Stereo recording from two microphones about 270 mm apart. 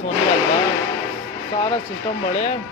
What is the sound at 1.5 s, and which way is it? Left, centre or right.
Speech, left.